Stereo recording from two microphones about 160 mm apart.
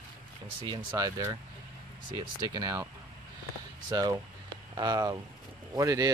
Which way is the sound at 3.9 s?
25° right (ahead or behind).